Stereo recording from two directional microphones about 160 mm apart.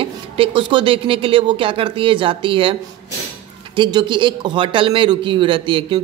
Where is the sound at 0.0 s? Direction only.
35° right (ahead or behind).